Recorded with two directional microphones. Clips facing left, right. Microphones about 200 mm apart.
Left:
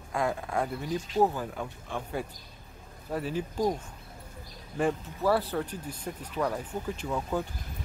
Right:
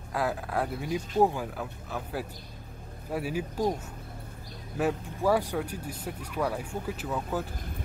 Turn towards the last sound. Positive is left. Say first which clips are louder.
# left 1 dB
turn(degrees=0)  # may be behind; listen again after turning